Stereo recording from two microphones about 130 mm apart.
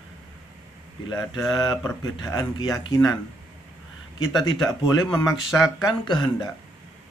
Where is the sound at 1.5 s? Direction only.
35° left (ahead or behind).